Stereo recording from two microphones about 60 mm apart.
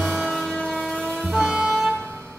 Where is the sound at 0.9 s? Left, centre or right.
Centre.